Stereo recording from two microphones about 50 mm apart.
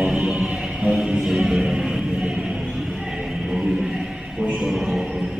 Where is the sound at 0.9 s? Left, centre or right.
Centre.